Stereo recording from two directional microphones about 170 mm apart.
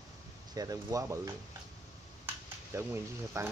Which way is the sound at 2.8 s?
15° right (ahead or behind).